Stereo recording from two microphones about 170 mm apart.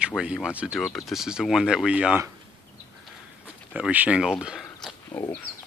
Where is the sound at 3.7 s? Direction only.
10° right (ahead or behind).